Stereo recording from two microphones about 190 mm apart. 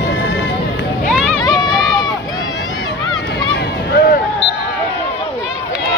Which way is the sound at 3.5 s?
60° left (ahead or behind).